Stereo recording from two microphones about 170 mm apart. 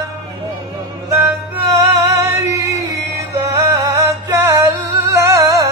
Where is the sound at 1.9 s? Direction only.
15° right (ahead or behind).